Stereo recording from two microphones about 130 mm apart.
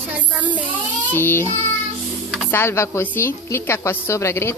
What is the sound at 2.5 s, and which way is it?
A woman's voice, 20° left (ahead or behind).